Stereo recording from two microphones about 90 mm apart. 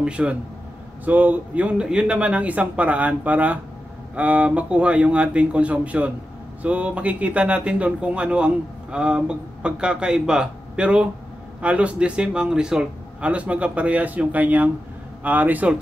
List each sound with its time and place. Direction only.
0.0 s speech: 10° right (ahead or behind)